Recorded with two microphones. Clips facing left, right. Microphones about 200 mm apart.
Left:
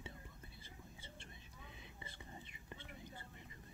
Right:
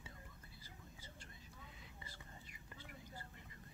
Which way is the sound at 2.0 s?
20° left (ahead or behind).